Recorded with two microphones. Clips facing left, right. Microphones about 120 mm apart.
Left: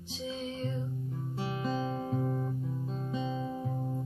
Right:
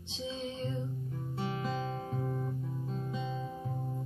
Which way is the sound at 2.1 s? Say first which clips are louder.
Left 5 dB; 10° left (ahead or behind).